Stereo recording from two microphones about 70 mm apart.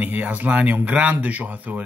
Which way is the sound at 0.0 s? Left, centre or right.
Right.